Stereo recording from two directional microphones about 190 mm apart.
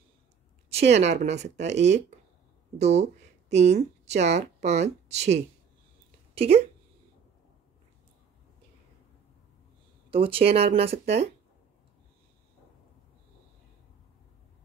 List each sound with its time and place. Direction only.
0.9 s speech: 35° right (ahead or behind)
10.1 s speech: 30° right (ahead or behind)